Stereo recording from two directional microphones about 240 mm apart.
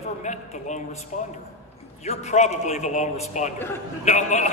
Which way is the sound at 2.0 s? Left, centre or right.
Left.